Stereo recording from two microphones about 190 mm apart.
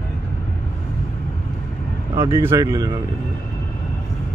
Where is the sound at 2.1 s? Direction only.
15° right (ahead or behind).